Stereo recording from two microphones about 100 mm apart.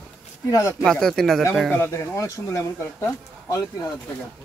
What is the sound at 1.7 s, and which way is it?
Speech, 25° left (ahead or behind).